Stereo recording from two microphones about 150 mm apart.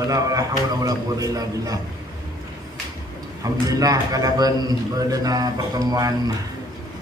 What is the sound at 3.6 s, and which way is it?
A man's voice, 25° right (ahead or behind).